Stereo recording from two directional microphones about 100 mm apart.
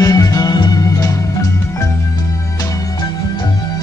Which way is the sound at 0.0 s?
35° left (ahead or behind).